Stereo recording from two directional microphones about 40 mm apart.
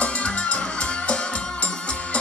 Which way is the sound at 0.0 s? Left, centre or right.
Left.